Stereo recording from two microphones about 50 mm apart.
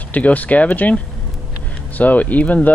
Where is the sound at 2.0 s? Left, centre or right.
Left.